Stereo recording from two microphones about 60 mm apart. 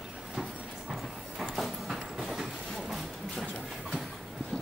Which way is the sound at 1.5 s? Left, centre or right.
Centre.